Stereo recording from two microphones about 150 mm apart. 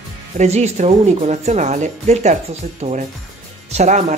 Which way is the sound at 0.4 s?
50° right (ahead or behind).